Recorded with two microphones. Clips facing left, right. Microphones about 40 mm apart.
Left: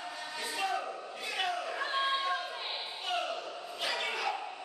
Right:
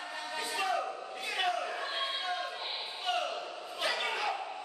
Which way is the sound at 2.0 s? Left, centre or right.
Centre.